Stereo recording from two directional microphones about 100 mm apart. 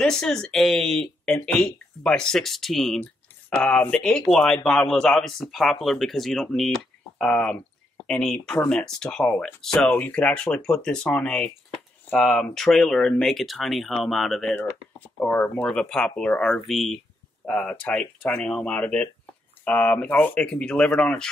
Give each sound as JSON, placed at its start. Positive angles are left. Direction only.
{"t": 0.0, "sound": "speech", "side_deg": 5}
{"t": 3.0, "sound": "speech", "side_deg": 15}
{"t": 15.4, "sound": "speech", "side_deg": 15}
{"t": 17.5, "sound": "speech", "side_deg": 10}